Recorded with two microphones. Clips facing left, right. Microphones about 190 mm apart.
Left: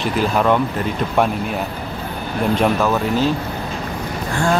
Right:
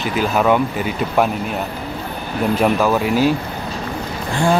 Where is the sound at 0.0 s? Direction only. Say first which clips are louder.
Even; 5° right (ahead or behind).